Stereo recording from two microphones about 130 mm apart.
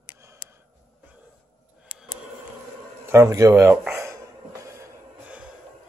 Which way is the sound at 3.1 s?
20° right (ahead or behind).